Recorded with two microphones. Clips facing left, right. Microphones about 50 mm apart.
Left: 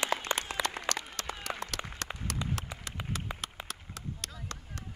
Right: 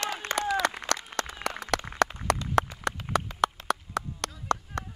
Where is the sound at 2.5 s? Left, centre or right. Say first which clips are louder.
Right 12 dB; right.